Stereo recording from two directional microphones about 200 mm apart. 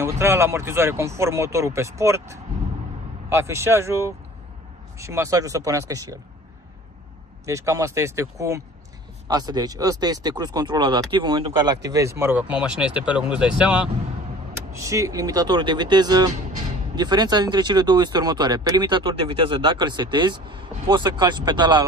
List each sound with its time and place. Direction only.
0.0 s speech: 15° right (ahead or behind)
7.4 s speech: 15° right (ahead or behind)